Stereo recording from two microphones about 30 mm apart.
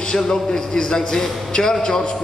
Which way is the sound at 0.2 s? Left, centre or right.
Centre.